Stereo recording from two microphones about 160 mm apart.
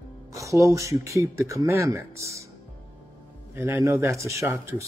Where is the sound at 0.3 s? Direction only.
20° right (ahead or behind).